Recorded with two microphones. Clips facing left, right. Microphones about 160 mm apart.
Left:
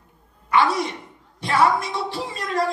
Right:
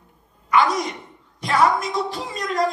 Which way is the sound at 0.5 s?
30° left (ahead or behind).